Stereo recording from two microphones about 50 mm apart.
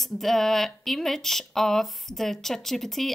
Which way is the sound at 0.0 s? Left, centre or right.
Centre.